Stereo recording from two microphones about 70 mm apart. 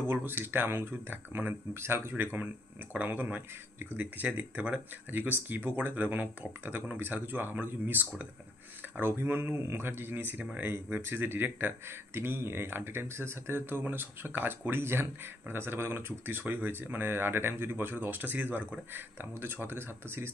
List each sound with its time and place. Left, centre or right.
0.0 s speech: right